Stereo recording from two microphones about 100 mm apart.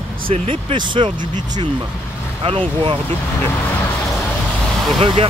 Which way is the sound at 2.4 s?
65° right (ahead or behind).